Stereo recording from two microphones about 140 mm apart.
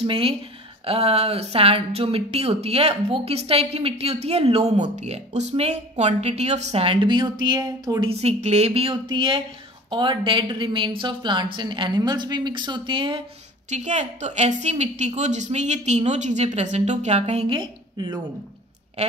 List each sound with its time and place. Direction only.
0.0 s speech: 40° right (ahead or behind)
8.1 s speech: 50° right (ahead or behind)
13.7 s a woman's voice: 55° right (ahead or behind)
17.6 s a woman's voice: 30° right (ahead or behind)